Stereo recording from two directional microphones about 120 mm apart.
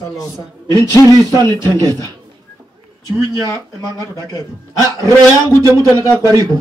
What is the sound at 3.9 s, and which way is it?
Speech, 30° right (ahead or behind).